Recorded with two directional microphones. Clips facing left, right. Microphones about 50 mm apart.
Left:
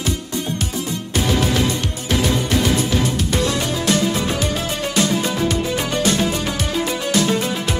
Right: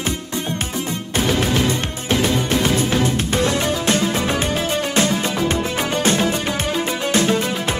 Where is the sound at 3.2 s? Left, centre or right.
Right.